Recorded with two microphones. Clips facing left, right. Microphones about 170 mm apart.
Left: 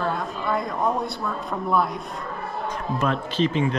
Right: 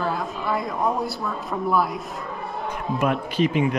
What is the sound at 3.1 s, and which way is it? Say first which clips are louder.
Speech: right 1 dB; 10° right (ahead or behind).